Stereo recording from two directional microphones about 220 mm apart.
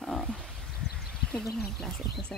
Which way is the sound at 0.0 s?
Centre (ahead or behind).